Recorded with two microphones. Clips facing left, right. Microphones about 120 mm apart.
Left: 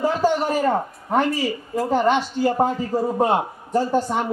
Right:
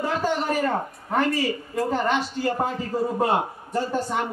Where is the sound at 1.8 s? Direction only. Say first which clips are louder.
Left 5 dB; 30° left (ahead or behind).